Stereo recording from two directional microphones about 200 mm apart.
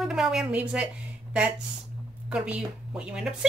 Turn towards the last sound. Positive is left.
turn(degrees=-5)  # may be behind; listen again after turning